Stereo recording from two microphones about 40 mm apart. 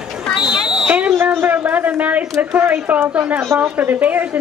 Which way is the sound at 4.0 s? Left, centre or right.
Right.